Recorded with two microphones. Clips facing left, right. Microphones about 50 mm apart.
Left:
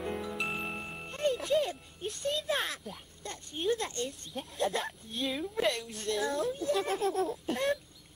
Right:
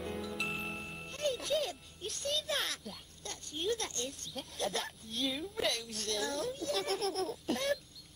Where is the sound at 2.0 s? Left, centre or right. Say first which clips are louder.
Left 3 dB; centre.